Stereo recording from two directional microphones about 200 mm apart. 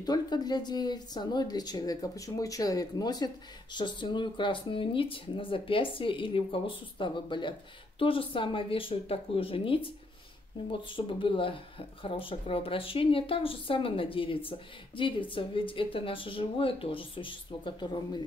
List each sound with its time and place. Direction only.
0.0 s speech: 20° left (ahead or behind)